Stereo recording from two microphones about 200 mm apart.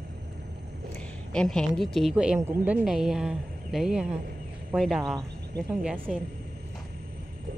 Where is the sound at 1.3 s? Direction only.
5° left (ahead or behind).